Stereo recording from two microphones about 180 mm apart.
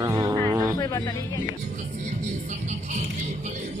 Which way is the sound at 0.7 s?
20° left (ahead or behind).